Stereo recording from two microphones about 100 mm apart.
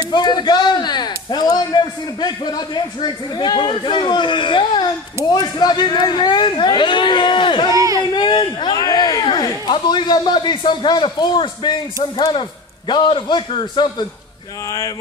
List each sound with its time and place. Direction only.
0.1 s speech: 45° left (ahead or behind)
7.7 s a sound: 35° right (ahead or behind)
8.0 s speech: 50° left (ahead or behind)